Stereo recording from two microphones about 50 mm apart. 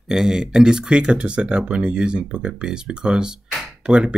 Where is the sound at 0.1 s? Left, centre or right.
Centre.